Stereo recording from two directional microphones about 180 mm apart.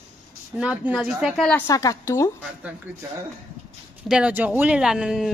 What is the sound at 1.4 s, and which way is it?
Speech, 15° left (ahead or behind).